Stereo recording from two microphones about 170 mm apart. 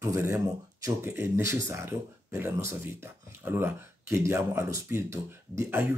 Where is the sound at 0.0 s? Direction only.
15° right (ahead or behind).